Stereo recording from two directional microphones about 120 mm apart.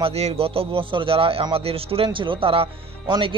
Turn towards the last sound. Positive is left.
turn(degrees=-45)  # may be behind; listen again after turning